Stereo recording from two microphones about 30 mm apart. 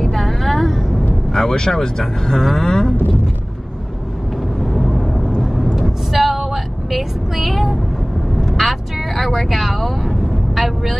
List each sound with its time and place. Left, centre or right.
0.0 s vehicle: centre
0.7 s vehicle: centre
1.3 s speech: centre
4.7 s vehicle: centre